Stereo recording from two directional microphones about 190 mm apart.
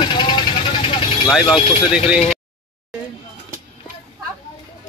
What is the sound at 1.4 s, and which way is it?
Speech, 25° left (ahead or behind).